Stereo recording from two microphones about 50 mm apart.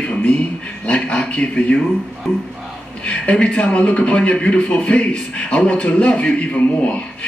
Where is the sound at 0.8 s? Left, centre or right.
Left.